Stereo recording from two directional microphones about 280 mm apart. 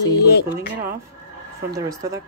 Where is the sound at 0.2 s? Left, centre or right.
Left.